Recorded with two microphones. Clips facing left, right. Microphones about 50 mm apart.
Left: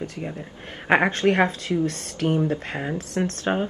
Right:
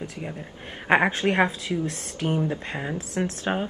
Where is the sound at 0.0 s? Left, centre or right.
Centre.